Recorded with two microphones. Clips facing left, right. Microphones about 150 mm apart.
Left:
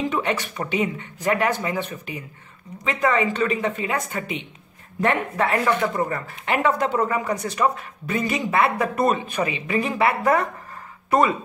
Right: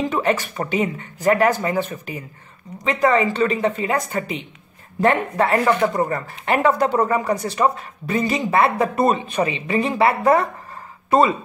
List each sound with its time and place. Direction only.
0.1 s a woman's voice: 40° right (ahead or behind); by 11.3 s 25° right (ahead or behind)